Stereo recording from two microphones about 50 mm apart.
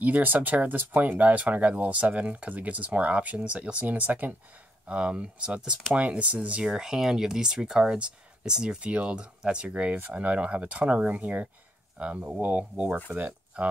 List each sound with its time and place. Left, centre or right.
0.0 s speech: right
4.8 s speech: right
6.7 s speech: centre; by 13.7 s right